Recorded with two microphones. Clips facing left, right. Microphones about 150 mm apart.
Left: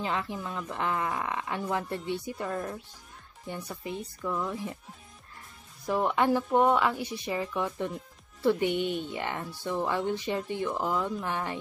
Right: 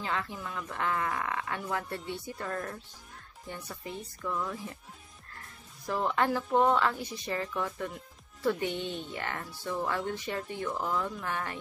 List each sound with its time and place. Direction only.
0.0 s speech: 20° left (ahead or behind)
5.9 s speech: 15° left (ahead or behind)